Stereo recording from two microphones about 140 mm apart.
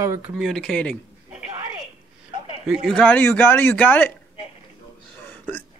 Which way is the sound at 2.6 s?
5° left (ahead or behind).